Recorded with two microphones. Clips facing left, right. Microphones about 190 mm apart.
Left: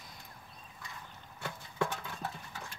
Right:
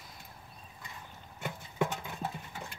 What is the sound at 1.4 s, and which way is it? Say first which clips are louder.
Clip-clop: right 2 dB; 20° right (ahead or behind).